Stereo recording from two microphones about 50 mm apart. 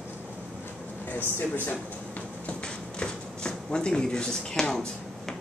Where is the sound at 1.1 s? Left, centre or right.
Left.